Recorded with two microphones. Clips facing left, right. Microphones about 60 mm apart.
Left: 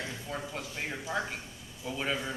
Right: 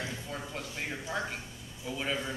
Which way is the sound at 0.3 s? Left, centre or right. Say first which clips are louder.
Left 1 dB; centre.